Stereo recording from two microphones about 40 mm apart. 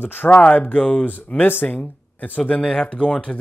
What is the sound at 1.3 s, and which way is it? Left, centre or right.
Speech, left.